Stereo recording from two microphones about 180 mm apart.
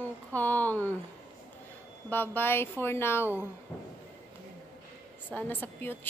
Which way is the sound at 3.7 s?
5° left (ahead or behind).